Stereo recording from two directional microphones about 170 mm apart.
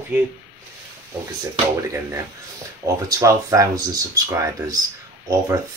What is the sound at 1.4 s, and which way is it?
Speech, 20° right (ahead or behind).